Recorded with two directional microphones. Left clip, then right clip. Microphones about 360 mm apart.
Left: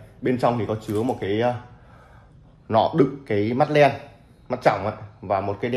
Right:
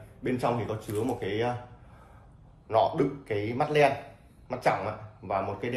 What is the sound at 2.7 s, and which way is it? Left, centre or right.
Speech, left.